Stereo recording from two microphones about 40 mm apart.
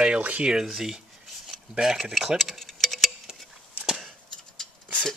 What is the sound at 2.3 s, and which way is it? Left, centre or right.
Tick-tock, centre.